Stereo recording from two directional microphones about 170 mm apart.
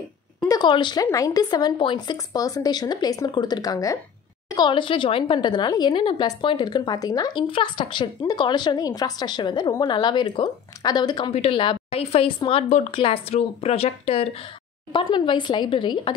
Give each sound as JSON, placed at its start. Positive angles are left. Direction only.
{"t": 0.5, "sound": "a woman's voice", "side_deg": 25}